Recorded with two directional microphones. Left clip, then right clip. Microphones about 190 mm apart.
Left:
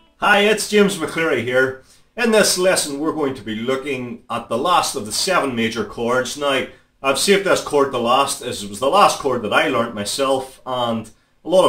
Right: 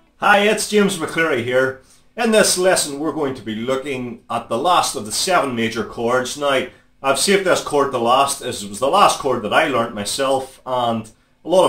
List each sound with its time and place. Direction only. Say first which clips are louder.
0.2 s speech: right 1 dB; centre (ahead or behind)